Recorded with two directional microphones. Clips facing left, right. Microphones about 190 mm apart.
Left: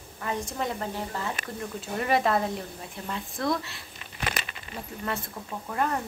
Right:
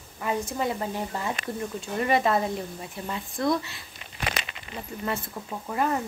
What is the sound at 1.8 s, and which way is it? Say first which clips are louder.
A woman's voice: right 1 dB; centre (ahead or behind).